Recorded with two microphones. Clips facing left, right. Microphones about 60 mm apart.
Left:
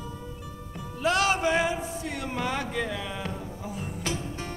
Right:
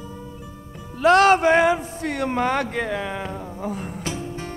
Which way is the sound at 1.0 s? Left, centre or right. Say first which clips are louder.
Right 10 dB; right.